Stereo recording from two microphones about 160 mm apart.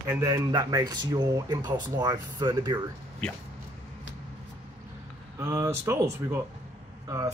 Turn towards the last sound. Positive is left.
turn(degrees=-20)  # may be behind; listen again after turning